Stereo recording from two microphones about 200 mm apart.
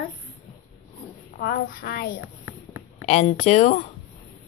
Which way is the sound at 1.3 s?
45° left (ahead or behind).